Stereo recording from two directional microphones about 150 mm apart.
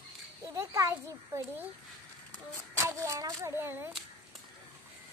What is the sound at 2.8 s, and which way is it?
Speech, 20° right (ahead or behind).